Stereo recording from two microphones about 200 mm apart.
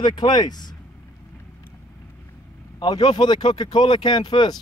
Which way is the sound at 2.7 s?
20° left (ahead or behind).